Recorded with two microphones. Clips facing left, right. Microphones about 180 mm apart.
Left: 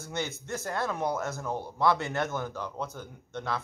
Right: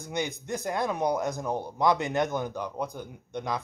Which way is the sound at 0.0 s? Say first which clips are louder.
Right 3 dB; 15° right (ahead or behind).